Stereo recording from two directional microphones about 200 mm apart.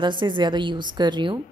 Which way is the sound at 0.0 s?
25° right (ahead or behind).